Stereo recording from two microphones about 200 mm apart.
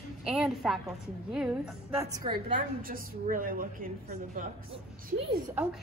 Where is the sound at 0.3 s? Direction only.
Centre (ahead or behind).